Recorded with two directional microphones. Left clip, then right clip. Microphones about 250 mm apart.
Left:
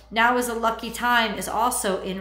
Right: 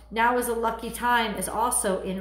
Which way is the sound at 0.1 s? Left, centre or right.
Centre.